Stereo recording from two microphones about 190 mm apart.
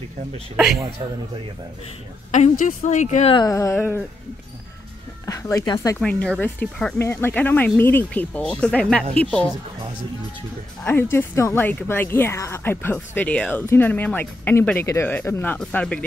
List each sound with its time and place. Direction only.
2.3 s a woman's voice: 40° left (ahead or behind)
3.3 s speech: 15° left (ahead or behind)
5.2 s speech: 15° left (ahead or behind)
5.9 s speech: 5° left (ahead or behind)
10.8 s speech: 10° left (ahead or behind)